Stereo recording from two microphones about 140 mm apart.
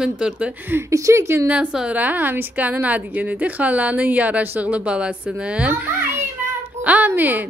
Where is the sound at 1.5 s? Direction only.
10° right (ahead or behind).